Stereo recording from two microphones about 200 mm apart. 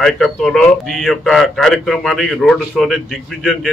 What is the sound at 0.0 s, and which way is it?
A man's voice, 5° left (ahead or behind).